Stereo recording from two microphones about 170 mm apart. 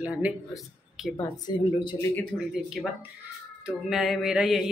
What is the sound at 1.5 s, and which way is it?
Speech, 25° left (ahead or behind).